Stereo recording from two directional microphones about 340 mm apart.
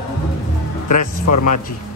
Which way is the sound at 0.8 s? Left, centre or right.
Left.